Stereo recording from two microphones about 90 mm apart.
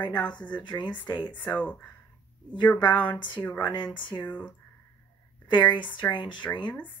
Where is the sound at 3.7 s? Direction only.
60° left (ahead or behind).